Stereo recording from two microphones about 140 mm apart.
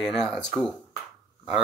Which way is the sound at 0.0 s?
Centre (ahead or behind).